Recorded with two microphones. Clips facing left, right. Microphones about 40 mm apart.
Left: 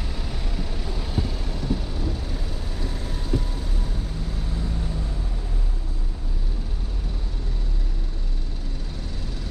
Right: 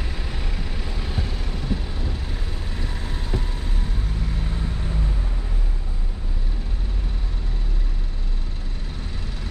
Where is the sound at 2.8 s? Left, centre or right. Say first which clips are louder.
Even; right.